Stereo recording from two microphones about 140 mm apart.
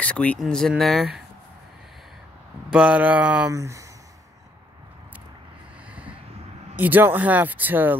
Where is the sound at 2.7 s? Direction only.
5° right (ahead or behind).